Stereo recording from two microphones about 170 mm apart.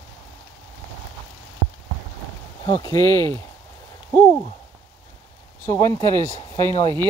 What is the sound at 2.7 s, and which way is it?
Speech, 20° left (ahead or behind).